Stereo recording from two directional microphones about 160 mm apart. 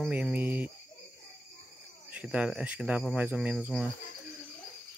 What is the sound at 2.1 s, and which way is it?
Speech, 10° right (ahead or behind).